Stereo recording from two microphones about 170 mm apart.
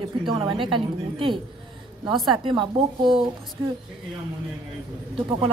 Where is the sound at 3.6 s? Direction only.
20° right (ahead or behind).